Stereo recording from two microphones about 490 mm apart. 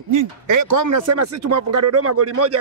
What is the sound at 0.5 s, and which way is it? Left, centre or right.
Speech, right.